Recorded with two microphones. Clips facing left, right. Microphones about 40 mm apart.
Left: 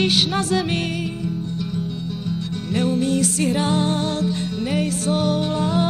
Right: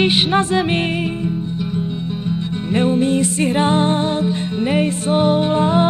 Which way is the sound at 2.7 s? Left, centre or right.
Right.